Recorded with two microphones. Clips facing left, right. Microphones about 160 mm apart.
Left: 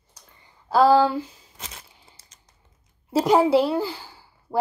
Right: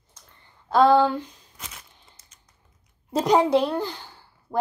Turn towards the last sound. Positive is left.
turn(degrees=5)  # may be behind; listen again after turning